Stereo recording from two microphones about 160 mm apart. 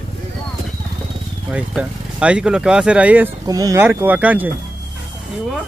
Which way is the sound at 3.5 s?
20° right (ahead or behind).